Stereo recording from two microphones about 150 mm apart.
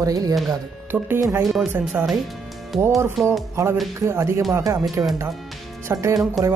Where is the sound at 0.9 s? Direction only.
10° right (ahead or behind).